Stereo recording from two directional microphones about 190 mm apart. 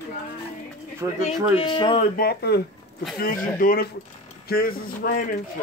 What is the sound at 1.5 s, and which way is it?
Speech, 25° left (ahead or behind).